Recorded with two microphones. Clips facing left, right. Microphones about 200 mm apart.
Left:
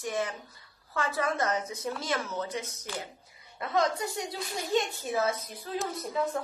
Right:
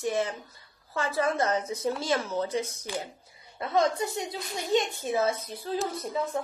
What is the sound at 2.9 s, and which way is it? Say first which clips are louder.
Speech: right 2 dB; 15° right (ahead or behind).